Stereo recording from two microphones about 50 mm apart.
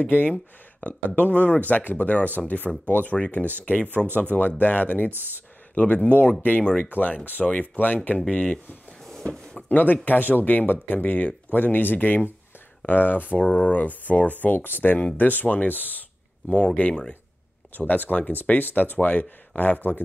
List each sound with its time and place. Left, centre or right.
0.8 s speech: left
5.1 s speech: right
5.8 s speech: left
6.6 s speech: centre
6.9 s speech: left
9.2 s a sound: centre
10.0 s speech: left
13.4 s speech: left
16.4 s speech: left
17.7 s speech: left